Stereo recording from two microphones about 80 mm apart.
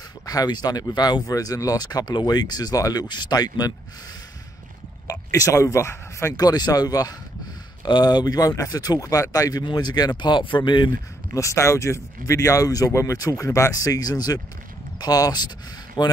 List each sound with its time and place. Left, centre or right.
0.3 s speech: left
5.0 s speech: left
6.3 s speech: left
7.8 s speech: left
9.7 s speech: left
11.3 s speech: left
16.0 s speech: left